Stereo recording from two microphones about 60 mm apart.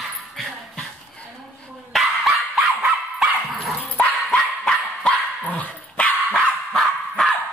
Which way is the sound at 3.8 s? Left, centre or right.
Left.